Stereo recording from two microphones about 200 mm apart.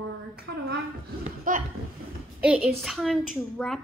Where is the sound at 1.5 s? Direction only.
40° right (ahead or behind).